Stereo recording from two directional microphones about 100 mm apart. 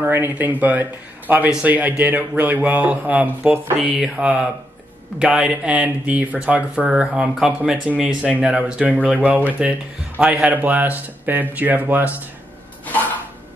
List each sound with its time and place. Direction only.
0.0 s speech: 20° right (ahead or behind)